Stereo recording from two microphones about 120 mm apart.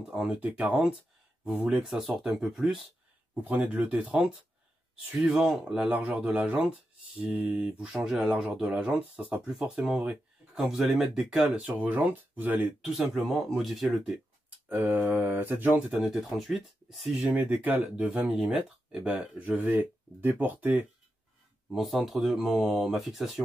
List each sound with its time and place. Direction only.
0.0 s speech: 5° right (ahead or behind)
12.8 s speech: centre (ahead or behind)
14.7 s speech: 20° right (ahead or behind)
16.0 s speech: 5° right (ahead or behind)
21.7 s speech: centre (ahead or behind)